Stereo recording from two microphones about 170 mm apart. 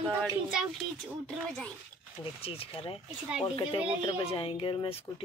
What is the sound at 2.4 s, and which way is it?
Speech, 35° left (ahead or behind).